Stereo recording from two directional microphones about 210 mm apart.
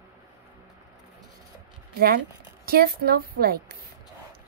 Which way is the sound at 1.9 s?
45° right (ahead or behind).